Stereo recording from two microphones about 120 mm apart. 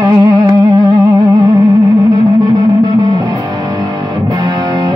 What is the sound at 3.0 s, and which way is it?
Music, 35° right (ahead or behind).